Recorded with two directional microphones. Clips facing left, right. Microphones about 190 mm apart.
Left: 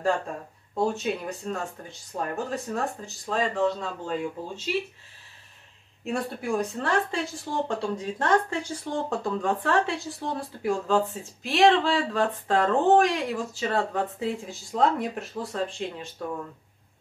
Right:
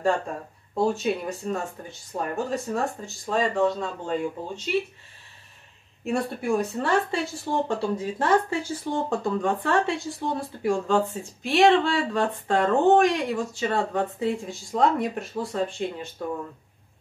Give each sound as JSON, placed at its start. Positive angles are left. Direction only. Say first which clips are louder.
{"t": 0.7, "sound": "speech", "louder": "right 2 dB", "side_deg": 0}
{"t": 6.0, "sound": "speech", "louder": "right 3 dB", "side_deg": 0}